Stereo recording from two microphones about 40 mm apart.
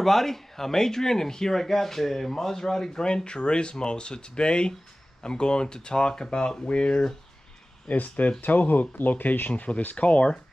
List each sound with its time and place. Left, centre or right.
0.0 s speech: centre; by 7.1 s left
7.9 s speech: left
9.5 s speech: left